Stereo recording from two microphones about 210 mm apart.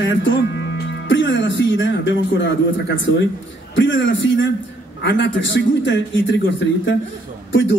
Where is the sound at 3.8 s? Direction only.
60° left (ahead or behind).